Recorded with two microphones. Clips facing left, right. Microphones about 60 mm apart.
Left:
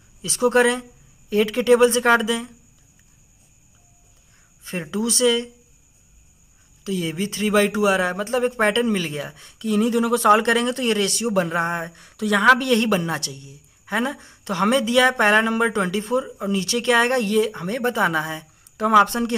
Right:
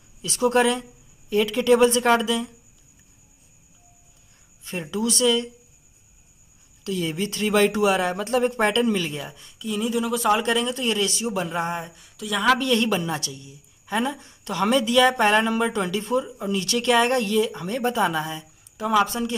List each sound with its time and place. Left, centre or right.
0.2 s speech: left
4.6 s speech: left
6.8 s speech: left
9.6 s a sound: left
10.3 s a woman's voice: left
11.9 s speech: left
12.4 s a woman's voice: left
18.8 s speech: left